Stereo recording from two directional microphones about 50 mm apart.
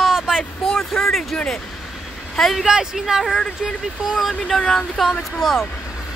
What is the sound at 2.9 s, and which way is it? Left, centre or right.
Speech, centre.